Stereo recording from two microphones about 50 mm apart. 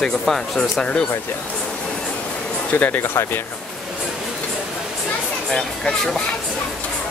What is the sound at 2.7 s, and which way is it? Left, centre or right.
Speech, left.